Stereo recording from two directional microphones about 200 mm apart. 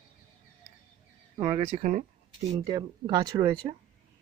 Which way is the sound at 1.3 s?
25° right (ahead or behind).